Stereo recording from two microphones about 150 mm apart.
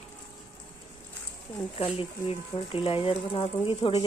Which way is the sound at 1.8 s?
40° left (ahead or behind).